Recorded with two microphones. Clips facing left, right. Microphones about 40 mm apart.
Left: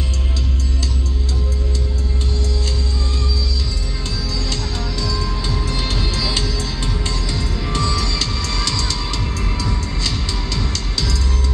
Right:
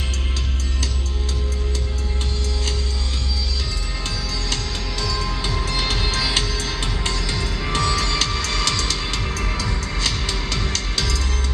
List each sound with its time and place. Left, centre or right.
5.0 s music: right
10.7 s music: right